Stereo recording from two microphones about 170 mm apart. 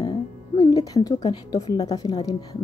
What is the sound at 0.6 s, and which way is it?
A woman's voice, 25° left (ahead or behind).